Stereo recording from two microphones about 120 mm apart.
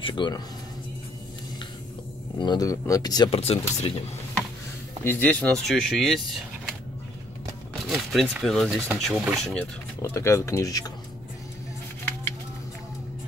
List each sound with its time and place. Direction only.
0.0 s speech: 40° left (ahead or behind)
2.3 s speech: 40° left (ahead or behind)
3.3 s speech: 55° left (ahead or behind)
5.0 s speech: 15° left (ahead or behind)
7.8 s speech: centre (ahead or behind)
10.1 s speech: 25° left (ahead or behind)